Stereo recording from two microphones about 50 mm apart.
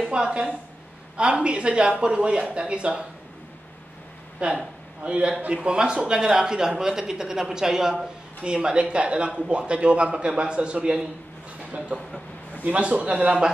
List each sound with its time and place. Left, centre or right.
0.1 s speech: centre
4.4 s speech: right